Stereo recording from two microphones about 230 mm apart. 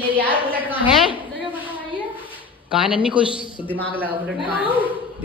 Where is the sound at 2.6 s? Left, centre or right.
Centre.